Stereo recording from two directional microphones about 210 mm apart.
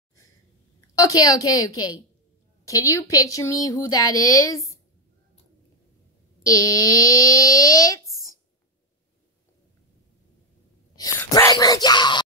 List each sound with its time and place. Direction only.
0.7 s a woman's voice: 15° left (ahead or behind)
6.4 s speech: 15° left (ahead or behind)
11.0 s speech: 15° left (ahead or behind)